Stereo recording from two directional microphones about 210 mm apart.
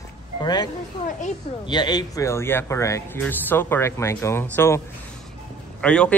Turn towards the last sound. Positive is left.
turn(degrees=5)  # may be behind; listen again after turning